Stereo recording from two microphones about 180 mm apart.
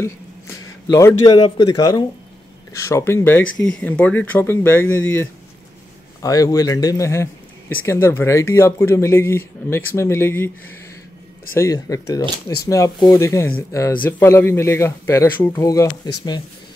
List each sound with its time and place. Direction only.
0.9 s a man's voice: 20° left (ahead or behind)
11.5 s a man's voice: 20° left (ahead or behind)